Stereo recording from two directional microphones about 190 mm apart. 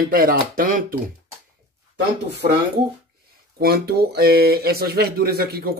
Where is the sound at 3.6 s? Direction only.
55° right (ahead or behind).